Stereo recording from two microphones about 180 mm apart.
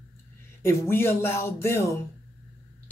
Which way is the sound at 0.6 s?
15° left (ahead or behind).